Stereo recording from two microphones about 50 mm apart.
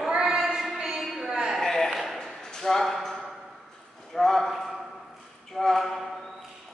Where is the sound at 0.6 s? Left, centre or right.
Centre.